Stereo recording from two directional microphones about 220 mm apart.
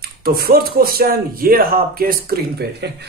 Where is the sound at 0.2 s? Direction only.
45° right (ahead or behind).